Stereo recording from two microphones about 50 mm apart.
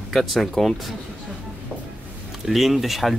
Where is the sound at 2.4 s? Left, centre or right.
Centre.